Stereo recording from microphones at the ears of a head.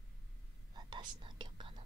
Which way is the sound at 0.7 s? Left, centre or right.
Right.